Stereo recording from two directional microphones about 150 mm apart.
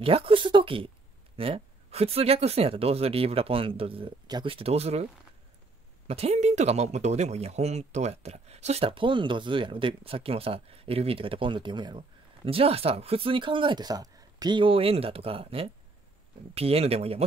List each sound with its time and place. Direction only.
0.0 s speech: 40° right (ahead or behind)
6.0 s speech: 45° right (ahead or behind)